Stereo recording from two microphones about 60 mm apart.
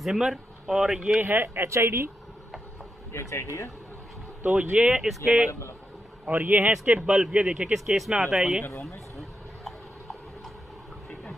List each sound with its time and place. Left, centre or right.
0.0 s speech: centre
1.2 s speech: right
3.1 s speech: left
4.7 s speech: centre
5.0 s speech: centre
6.2 s speech: right
6.7 s speech: centre
9.1 s a sound: centre